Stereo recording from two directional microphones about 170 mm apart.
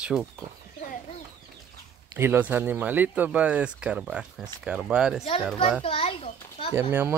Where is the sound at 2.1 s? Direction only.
10° right (ahead or behind).